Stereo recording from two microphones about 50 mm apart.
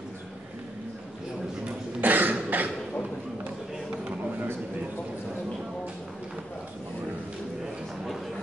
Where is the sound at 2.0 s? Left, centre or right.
Right.